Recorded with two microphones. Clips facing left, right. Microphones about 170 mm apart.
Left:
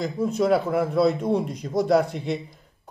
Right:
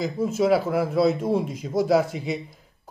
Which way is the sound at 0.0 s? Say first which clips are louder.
Even; centre (ahead or behind).